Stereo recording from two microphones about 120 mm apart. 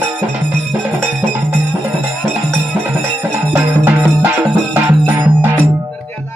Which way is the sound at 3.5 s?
20° right (ahead or behind).